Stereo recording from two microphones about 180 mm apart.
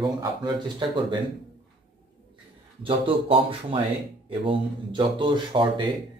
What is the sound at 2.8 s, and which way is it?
Speech, 30° right (ahead or behind).